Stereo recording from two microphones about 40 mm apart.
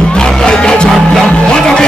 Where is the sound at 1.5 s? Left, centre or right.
Left.